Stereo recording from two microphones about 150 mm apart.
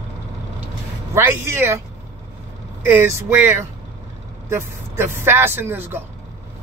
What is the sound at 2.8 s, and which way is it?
Speech, 15° right (ahead or behind).